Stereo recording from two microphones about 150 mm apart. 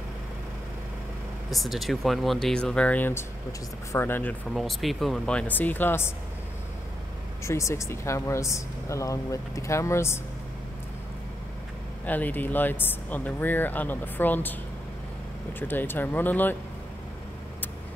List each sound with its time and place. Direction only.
1.5 s speech: centre (ahead or behind)
4.6 s speech: centre (ahead or behind)
7.4 s speech: 20° left (ahead or behind)
12.1 s speech: 10° left (ahead or behind)
15.6 s speech: 15° left (ahead or behind)